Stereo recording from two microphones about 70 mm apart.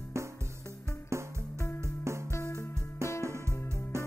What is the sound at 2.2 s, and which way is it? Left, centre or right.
Music, left.